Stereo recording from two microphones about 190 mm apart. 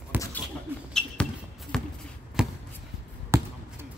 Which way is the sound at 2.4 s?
5° right (ahead or behind).